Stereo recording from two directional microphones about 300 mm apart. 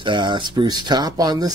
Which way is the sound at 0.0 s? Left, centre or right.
Centre.